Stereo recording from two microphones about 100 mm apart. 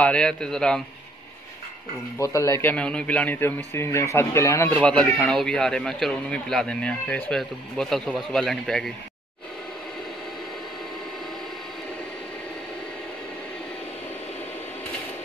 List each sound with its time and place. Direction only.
0.0 s speech: 10° left (ahead or behind)
2.1 s speech: 30° left (ahead or behind)
2.7 s a man's voice: 10° left (ahead or behind); by 4.6 s 30° left (ahead or behind)
4.6 s speech: 15° left (ahead or behind)